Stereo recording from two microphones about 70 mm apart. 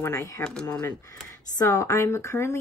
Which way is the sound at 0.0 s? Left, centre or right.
Left.